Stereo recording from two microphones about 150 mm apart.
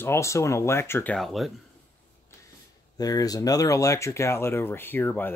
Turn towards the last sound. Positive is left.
turn(degrees=15)  # may be behind; listen again after turning